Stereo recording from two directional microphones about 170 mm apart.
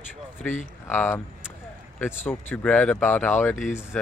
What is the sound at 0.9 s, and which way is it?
Speech, 10° left (ahead or behind).